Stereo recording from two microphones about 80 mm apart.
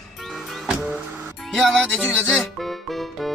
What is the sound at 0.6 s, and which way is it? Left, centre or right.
Music, centre.